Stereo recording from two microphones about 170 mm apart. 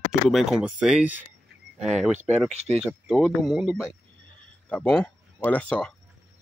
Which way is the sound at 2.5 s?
40° right (ahead or behind).